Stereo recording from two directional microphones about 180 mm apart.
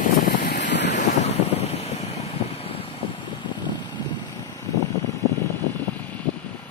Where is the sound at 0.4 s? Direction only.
70° left (ahead or behind).